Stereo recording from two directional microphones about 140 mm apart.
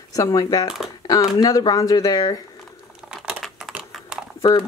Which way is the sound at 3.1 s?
5° right (ahead or behind).